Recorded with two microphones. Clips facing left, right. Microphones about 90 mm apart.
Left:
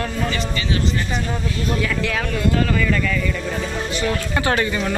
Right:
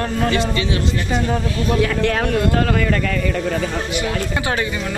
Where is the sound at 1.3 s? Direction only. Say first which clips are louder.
Right 4 dB; 55° right (ahead or behind).